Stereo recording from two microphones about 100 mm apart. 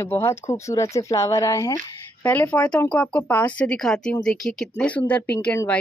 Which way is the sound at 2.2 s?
15° left (ahead or behind).